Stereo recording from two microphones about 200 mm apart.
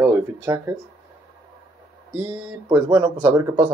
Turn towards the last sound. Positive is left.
turn(degrees=-20)  # may be behind; listen again after turning